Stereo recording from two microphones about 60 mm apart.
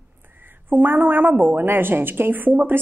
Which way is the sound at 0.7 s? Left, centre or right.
Right.